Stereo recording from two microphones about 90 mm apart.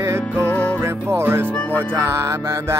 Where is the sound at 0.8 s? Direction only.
30° right (ahead or behind).